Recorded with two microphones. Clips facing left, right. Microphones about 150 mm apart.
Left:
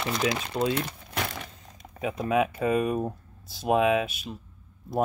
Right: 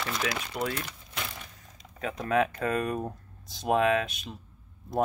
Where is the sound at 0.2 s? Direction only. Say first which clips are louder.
Left 7 dB; 25° left (ahead or behind).